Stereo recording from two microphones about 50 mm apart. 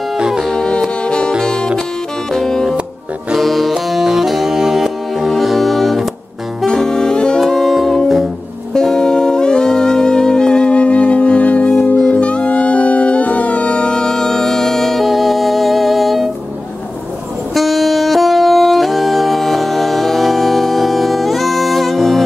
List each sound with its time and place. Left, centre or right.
0.2 s music: centre
0.5 s music: centre
6.6 s saxophone: centre
7.3 s music: centre
17.6 s saxophone: centre